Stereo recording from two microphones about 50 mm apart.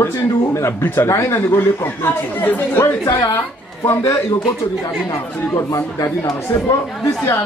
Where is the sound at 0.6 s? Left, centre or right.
Left.